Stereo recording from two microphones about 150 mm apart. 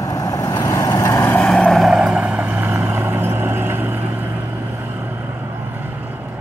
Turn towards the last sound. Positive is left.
turn(degrees=-10)  # may be behind; listen again after turning